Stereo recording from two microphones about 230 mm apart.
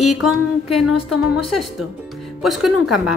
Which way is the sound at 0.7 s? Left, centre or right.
Left.